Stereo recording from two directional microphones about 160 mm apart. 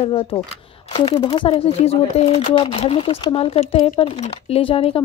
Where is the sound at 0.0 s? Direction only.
35° left (ahead or behind).